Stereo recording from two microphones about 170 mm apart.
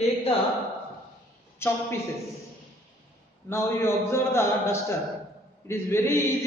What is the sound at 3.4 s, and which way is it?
A man's voice, 15° left (ahead or behind).